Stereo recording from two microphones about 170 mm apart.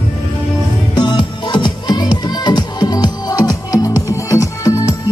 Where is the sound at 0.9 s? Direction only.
25° left (ahead or behind).